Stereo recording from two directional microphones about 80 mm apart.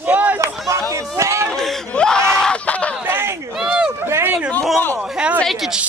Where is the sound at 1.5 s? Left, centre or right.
Centre.